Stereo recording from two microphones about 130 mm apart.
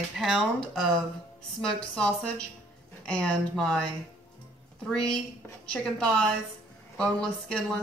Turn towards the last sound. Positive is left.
turn(degrees=10)  # may be behind; listen again after turning